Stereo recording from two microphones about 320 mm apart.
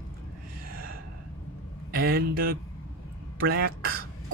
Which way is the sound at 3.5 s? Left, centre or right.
Right.